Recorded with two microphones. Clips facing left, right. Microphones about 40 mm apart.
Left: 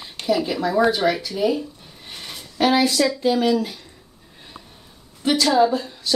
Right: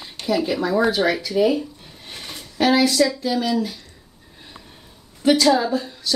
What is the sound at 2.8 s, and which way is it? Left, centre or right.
Speech, centre.